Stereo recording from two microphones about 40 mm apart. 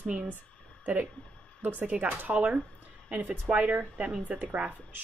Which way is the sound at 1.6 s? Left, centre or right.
Right.